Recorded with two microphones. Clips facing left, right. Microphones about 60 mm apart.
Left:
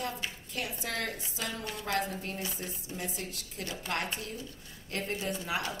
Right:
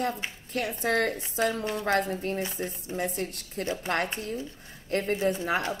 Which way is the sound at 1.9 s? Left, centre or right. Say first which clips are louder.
Right 3 dB; right.